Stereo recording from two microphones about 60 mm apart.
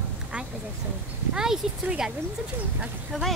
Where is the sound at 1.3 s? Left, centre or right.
Centre.